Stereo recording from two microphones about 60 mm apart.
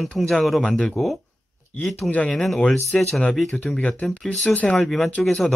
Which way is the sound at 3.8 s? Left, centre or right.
Left.